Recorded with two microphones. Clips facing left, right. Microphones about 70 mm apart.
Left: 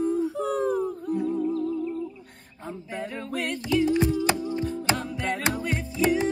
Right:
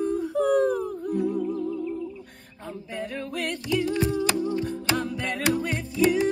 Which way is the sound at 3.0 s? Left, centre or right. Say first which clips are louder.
Even; centre.